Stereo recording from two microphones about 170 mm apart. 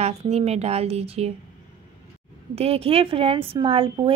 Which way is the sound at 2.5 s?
35° right (ahead or behind).